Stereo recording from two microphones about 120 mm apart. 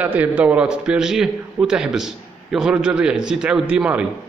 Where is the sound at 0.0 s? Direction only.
15° right (ahead or behind).